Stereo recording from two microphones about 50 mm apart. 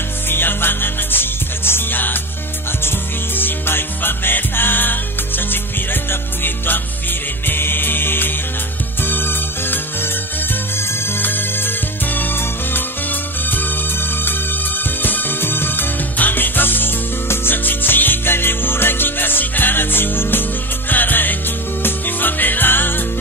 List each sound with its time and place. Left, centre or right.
0.3 s music: left
3.3 s music: left